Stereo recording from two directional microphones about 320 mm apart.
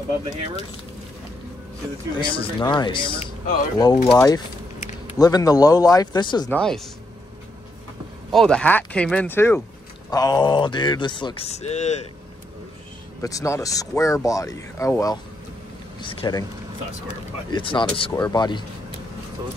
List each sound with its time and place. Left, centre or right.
2.1 s speech: centre
8.3 s speech: centre; by 12.1 s left
13.2 s speech: centre
17.5 s speech: centre